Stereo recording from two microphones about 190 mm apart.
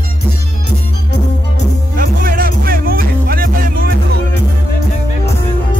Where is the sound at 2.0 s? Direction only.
50° right (ahead or behind).